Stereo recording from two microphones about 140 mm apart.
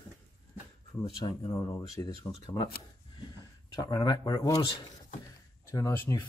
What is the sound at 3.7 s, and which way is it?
Speech, 25° left (ahead or behind).